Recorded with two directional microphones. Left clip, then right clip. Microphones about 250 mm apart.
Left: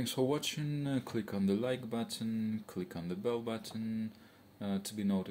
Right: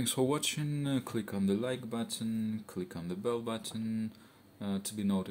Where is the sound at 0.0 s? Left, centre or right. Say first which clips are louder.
Right 2 dB; centre.